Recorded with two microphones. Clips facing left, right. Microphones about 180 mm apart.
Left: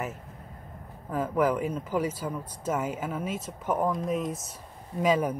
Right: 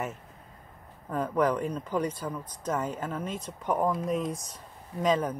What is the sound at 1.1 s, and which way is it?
Speech, 5° left (ahead or behind).